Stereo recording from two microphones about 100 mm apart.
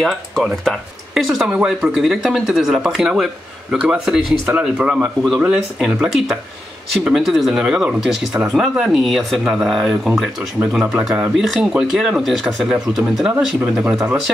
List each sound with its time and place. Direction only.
0.0 s speech: 5° left (ahead or behind)